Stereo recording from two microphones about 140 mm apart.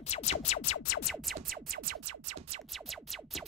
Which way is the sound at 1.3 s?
90° right.